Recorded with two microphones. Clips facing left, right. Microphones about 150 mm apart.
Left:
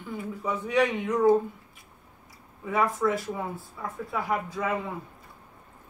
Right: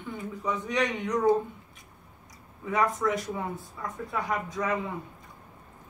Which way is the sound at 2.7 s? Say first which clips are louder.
Left 1 dB; centre (ahead or behind).